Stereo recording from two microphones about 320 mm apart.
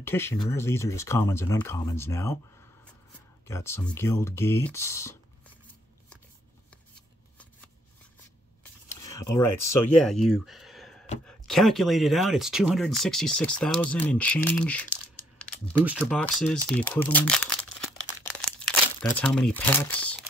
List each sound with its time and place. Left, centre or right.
0.0 s speech: centre
3.4 s speech: centre
8.8 s speech: centre
18.0 s a sound: centre
19.1 s speech: centre